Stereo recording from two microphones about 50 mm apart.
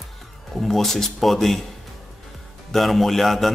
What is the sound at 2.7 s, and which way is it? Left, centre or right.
Speech, centre.